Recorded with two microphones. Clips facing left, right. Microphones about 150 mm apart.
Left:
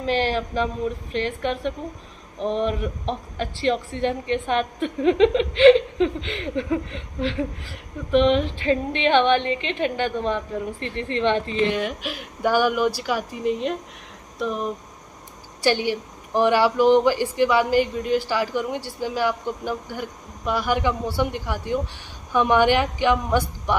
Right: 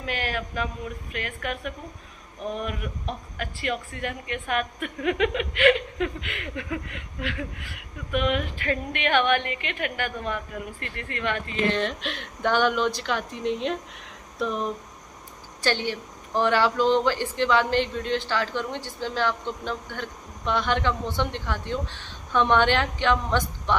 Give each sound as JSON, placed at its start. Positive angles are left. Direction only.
{"t": 0.0, "sound": "a woman's voice", "side_deg": 30}
{"t": 11.7, "sound": "speech", "side_deg": 10}
{"t": 15.6, "sound": "speech", "side_deg": 10}